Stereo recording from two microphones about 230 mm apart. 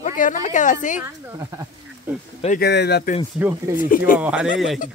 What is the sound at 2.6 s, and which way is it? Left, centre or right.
Speech, left.